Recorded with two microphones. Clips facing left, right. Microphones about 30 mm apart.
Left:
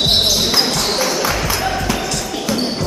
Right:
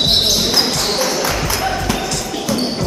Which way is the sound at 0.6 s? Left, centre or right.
Centre.